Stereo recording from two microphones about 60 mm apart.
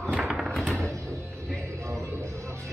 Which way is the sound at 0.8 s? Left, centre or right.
Right.